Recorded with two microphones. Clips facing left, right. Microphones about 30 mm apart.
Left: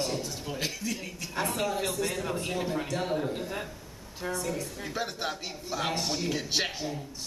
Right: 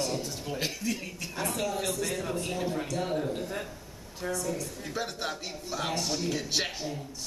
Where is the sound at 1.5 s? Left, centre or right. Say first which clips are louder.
Even; centre.